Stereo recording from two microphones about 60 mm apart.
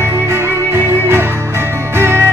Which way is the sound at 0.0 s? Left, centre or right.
Right.